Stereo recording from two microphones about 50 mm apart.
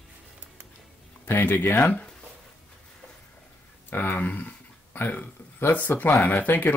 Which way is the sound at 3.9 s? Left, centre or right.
Left.